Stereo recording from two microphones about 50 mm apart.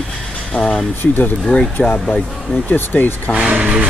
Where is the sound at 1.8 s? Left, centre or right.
Left.